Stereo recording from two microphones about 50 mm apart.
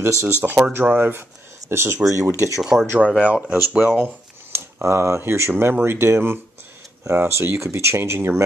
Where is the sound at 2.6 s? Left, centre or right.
Centre.